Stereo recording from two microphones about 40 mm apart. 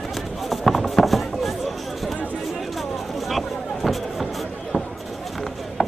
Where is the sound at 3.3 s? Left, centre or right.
Centre.